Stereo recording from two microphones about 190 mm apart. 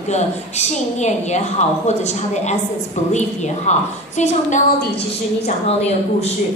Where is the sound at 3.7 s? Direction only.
35° left (ahead or behind).